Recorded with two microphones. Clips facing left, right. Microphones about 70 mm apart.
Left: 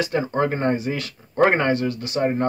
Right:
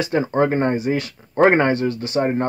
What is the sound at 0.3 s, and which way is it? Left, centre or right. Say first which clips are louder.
Speech: right 3 dB; right.